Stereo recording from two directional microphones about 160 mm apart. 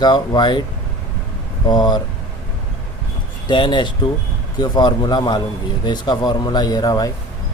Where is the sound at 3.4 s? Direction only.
30° left (ahead or behind).